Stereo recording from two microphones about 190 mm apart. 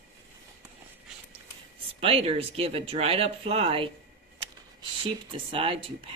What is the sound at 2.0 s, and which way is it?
Speech, 30° right (ahead or behind).